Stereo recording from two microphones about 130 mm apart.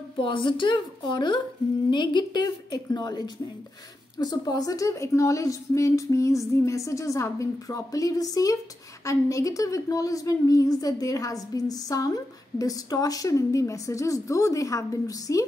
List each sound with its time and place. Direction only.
0.2 s a woman's voice: 40° left (ahead or behind)